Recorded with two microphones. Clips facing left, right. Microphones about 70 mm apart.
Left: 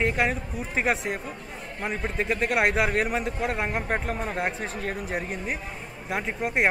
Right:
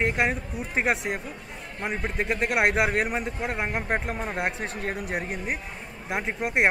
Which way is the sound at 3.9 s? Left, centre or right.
Centre.